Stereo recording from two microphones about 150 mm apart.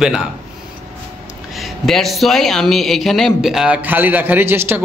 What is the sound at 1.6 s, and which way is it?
A man's voice, centre (ahead or behind).